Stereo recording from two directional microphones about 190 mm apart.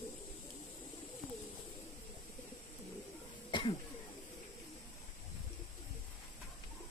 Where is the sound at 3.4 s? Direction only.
25° left (ahead or behind).